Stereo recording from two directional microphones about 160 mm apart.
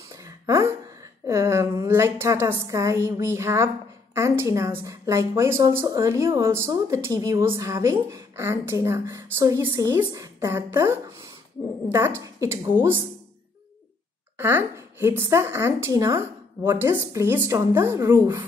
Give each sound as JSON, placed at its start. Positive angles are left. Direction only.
{"t": 0.1, "sound": "a sound", "side_deg": -20}
{"t": 1.2, "sound": "a woman's voice", "side_deg": -20}
{"t": 14.4, "sound": "a woman's voice", "side_deg": -15}